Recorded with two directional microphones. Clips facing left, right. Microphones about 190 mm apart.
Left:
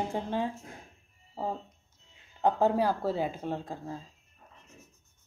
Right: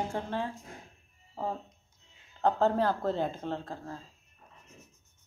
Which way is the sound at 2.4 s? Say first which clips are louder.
Left 1 dB; 10° left (ahead or behind).